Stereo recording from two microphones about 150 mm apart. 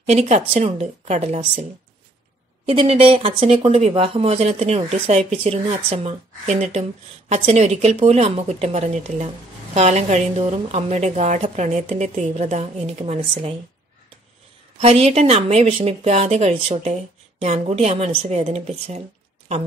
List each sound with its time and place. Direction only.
0.0 s speech: 45° right (ahead or behind)
14.8 s speech: 45° right (ahead or behind)